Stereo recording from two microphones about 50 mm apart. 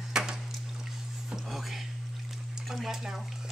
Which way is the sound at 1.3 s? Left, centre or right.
Centre.